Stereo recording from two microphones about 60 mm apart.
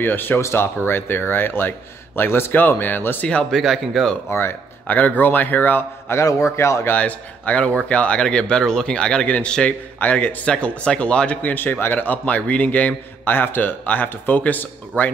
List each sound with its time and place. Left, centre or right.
0.0 s a man's voice: left
3.5 s speech: centre
4.3 s speech: left
4.8 s a man's voice: left
6.2 s a man's voice: left
6.9 s a man's voice: left
11.5 s speech: left
13.2 s a man's voice: left